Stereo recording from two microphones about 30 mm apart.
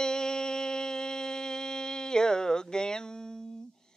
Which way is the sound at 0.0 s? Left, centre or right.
Left.